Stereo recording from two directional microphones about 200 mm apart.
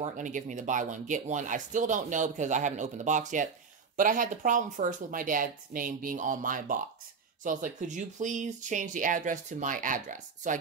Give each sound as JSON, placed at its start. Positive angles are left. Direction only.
{"t": 0.0, "sound": "speech", "side_deg": -40}